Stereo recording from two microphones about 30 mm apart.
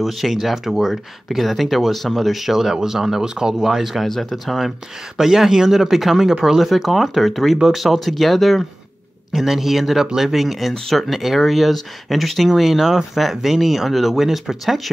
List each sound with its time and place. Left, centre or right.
0.0 s speech: centre
4.1 s speech: centre
5.1 s speech: centre
9.3 s speech: centre